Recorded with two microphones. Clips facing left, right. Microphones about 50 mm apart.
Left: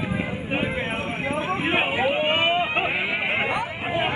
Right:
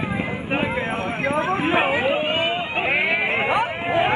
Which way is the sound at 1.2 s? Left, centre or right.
Right.